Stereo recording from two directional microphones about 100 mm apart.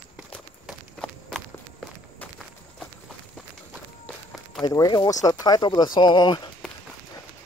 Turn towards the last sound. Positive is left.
turn(degrees=45)  # may be behind; listen again after turning